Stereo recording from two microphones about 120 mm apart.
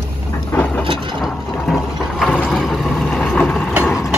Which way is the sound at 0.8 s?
45° right (ahead or behind).